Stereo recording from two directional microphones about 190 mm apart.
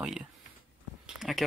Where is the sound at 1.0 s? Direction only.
5° right (ahead or behind).